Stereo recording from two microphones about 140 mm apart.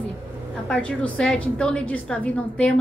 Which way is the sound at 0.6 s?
10° left (ahead or behind).